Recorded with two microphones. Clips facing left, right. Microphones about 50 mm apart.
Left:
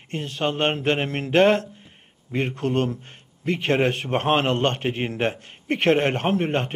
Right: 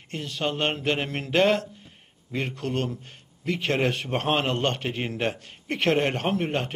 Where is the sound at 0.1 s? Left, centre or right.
Left.